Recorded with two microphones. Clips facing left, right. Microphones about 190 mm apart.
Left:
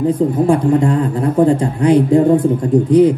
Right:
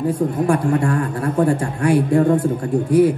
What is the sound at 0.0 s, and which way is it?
Speech, 20° left (ahead or behind).